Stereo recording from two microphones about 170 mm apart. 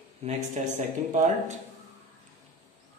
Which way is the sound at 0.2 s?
40° right (ahead or behind).